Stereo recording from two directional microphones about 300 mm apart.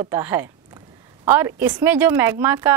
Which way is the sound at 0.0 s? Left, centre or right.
Centre.